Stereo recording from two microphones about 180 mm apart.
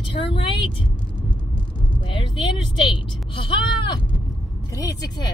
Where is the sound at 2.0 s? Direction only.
25° left (ahead or behind).